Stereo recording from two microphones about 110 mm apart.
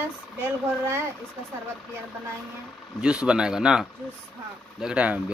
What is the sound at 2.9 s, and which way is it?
Speech, 10° right (ahead or behind).